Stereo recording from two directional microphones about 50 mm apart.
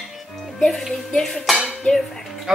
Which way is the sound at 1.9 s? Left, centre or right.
Left.